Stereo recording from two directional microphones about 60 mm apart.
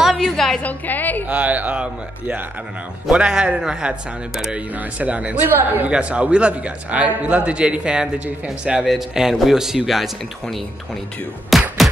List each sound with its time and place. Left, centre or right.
0.0 s a sound: centre
0.6 s a woman's voice: left
1.3 s a man's voice: right
3.1 s speech: centre
4.9 s a man's voice: right
5.6 s a woman's voice: right
5.9 s a man's voice: centre
11.5 s music: centre